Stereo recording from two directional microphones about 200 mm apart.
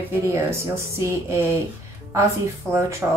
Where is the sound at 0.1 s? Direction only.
15° right (ahead or behind).